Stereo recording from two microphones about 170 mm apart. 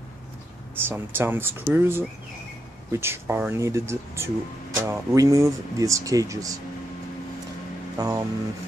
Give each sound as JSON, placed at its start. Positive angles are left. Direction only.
{"t": 0.8, "sound": "speech", "side_deg": -15}
{"t": 8.0, "sound": "speech", "side_deg": -20}